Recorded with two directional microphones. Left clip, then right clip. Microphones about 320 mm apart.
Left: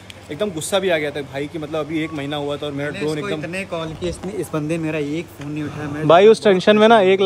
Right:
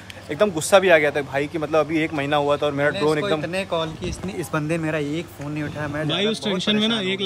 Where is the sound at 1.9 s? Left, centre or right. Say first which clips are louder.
Right 2 dB; centre.